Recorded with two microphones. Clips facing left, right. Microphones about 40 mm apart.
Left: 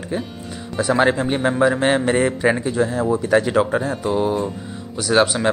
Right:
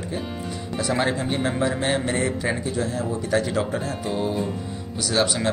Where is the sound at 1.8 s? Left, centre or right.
Left.